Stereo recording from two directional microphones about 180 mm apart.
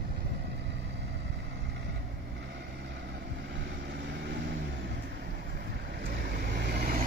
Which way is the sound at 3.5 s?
70° right (ahead or behind).